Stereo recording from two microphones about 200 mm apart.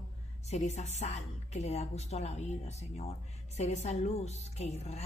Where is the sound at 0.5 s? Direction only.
35° left (ahead or behind).